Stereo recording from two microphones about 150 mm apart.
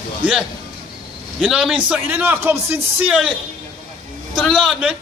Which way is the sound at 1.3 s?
Centre (ahead or behind).